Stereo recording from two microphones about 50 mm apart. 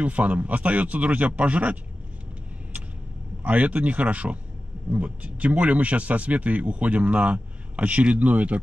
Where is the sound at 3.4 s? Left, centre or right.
Right.